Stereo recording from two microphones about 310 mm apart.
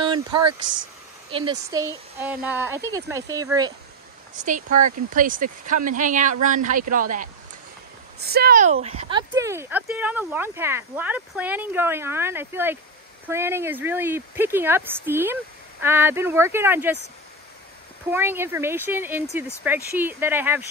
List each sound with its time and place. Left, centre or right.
0.0 s a sound: centre
1.3 s speech: centre
4.4 s speech: right; by 17.0 s centre
18.1 s speech: centre